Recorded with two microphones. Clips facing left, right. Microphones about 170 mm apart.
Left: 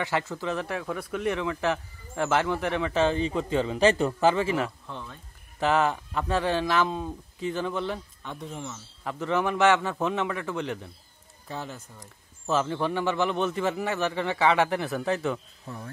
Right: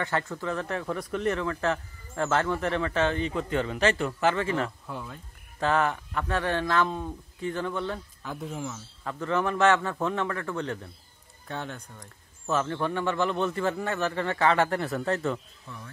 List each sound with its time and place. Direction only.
0.4 s speech: 15° left (ahead or behind)
3.2 s speech: 25° left (ahead or behind)
3.5 s speech: 15° left (ahead or behind)
4.8 s speech: 10° right (ahead or behind)
5.6 s speech: 20° left (ahead or behind)
8.2 s a man's voice: centre (ahead or behind)
9.0 s speech: 15° left (ahead or behind)
11.4 s a man's voice: centre (ahead or behind)
12.4 s speech: 20° left (ahead or behind)
13.8 s a man's voice: centre (ahead or behind)
15.6 s speech: 40° left (ahead or behind)